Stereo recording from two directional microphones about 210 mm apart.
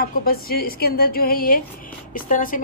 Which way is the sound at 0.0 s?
45° left (ahead or behind).